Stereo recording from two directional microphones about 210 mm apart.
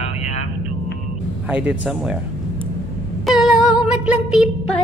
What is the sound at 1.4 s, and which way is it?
Speech, 5° right (ahead or behind).